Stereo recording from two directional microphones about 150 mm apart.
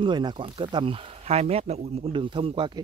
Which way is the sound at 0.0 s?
30° right (ahead or behind).